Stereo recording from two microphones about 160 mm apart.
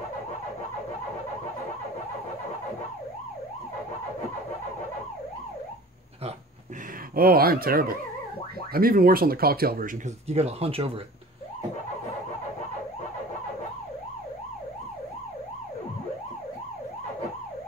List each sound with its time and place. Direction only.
7.2 s speech: 70° right (ahead or behind)
10.2 s speech: 40° right (ahead or behind)